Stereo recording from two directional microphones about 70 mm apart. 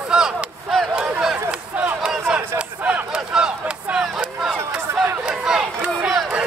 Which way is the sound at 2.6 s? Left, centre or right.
Centre.